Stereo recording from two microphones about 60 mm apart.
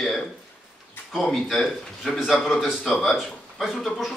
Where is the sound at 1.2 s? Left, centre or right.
Centre.